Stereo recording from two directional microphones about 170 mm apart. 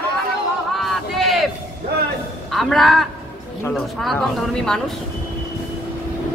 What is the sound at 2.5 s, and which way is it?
Speech, centre (ahead or behind).